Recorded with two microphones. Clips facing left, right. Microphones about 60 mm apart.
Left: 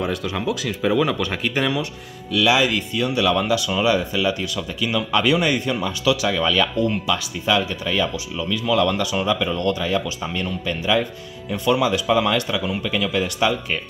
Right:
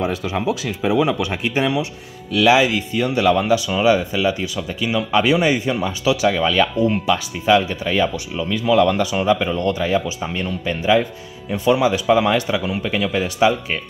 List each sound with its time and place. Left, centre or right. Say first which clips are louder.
0.3 s speech: right 2 dB; centre
2.4 s speech: right 4 dB; right